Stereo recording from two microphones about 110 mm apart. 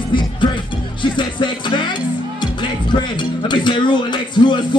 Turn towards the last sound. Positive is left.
turn(degrees=45)  # may be behind; listen again after turning